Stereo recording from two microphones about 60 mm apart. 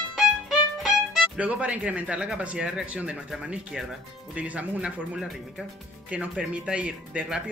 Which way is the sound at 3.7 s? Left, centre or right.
Centre.